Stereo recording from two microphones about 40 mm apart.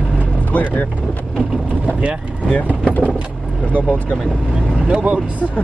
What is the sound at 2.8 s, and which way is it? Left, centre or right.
Vehicle, left.